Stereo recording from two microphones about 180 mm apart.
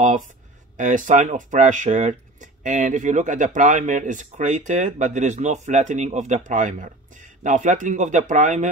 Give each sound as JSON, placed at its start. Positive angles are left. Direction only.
{"t": 0.7, "sound": "speech", "side_deg": -45}